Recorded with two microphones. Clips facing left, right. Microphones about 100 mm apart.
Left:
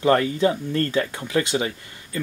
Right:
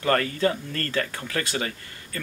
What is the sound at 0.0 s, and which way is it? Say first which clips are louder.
Speech: left 4 dB; 20° left (ahead or behind).